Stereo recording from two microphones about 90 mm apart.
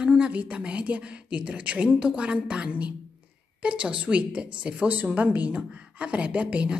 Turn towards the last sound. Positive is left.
turn(degrees=-15)  # may be behind; listen again after turning